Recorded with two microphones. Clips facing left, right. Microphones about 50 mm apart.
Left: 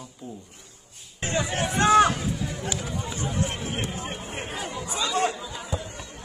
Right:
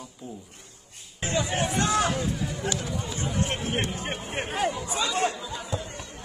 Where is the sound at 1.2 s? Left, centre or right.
Left.